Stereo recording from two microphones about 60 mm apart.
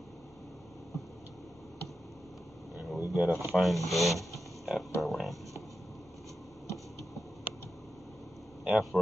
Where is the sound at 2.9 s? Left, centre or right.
Centre.